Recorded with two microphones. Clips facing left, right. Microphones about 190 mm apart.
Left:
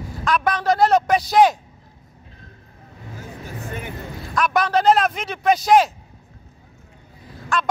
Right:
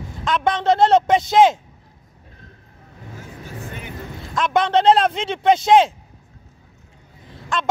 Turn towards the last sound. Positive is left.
turn(degrees=-25)  # may be behind; listen again after turning